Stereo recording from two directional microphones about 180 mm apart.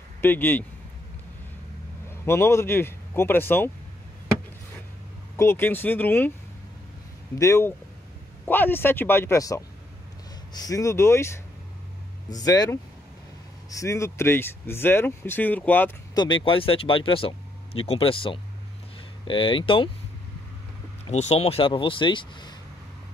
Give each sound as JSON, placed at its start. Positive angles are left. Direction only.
{"t": 0.2, "sound": "speech", "side_deg": 10}
{"t": 2.0, "sound": "a man's voice", "side_deg": 15}
{"t": 5.4, "sound": "speech", "side_deg": 10}
{"t": 7.3, "sound": "speech", "side_deg": 15}
{"t": 16.4, "sound": "speech", "side_deg": 30}
{"t": 21.1, "sound": "speech", "side_deg": 35}